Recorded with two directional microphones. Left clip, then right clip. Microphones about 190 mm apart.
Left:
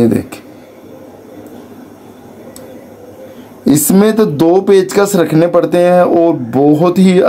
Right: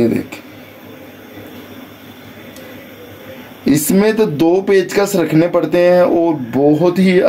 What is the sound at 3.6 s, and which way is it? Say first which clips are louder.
Speech: left 3 dB; 35° left (ahead or behind).